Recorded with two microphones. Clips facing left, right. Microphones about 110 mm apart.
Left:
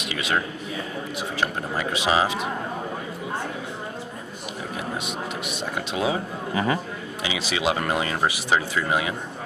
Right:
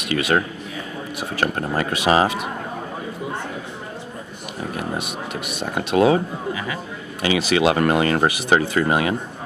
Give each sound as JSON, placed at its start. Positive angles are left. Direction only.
{"t": 0.0, "sound": "a man's voice", "side_deg": -50}
{"t": 5.6, "sound": "speech", "side_deg": -50}
{"t": 6.5, "sound": "a man's voice", "side_deg": 35}
{"t": 7.2, "sound": "speech", "side_deg": -55}